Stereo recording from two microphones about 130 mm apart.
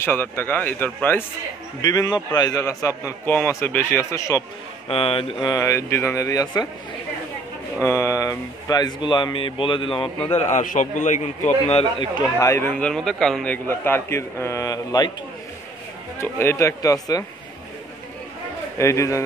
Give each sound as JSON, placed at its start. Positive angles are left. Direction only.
{"t": 0.0, "sound": "a man's voice", "side_deg": 15}
{"t": 1.8, "sound": "a man's voice", "side_deg": 30}
{"t": 4.8, "sound": "speech", "side_deg": 45}
{"t": 5.5, "sound": "a man's voice", "side_deg": 25}
{"t": 7.8, "sound": "speech", "side_deg": 20}
{"t": 10.2, "sound": "a man's voice", "side_deg": 60}
{"t": 11.4, "sound": "speech", "side_deg": 55}
{"t": 12.4, "sound": "a man's voice", "side_deg": 20}
{"t": 16.2, "sound": "a man's voice", "side_deg": 20}
{"t": 18.8, "sound": "a man's voice", "side_deg": 20}